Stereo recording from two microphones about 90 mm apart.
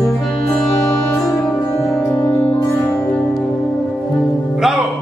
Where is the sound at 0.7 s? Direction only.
40° left (ahead or behind).